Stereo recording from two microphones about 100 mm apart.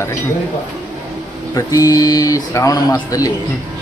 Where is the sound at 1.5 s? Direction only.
35° left (ahead or behind).